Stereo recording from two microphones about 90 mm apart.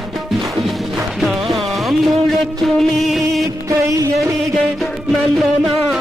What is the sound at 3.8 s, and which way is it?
Music, 40° right (ahead or behind).